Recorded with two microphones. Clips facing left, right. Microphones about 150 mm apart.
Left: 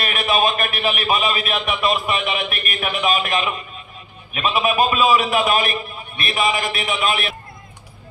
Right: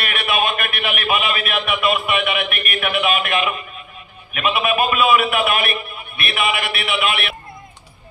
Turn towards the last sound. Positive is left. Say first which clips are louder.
# even
turn(degrees=35)  # may be behind; listen again after turning